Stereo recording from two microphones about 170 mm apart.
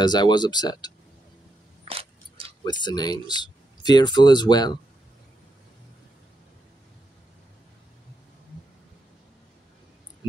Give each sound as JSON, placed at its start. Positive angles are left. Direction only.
{"t": 0.0, "sound": "speech", "side_deg": 25}
{"t": 1.9, "sound": "a sound", "side_deg": -35}
{"t": 2.6, "sound": "speech", "side_deg": 25}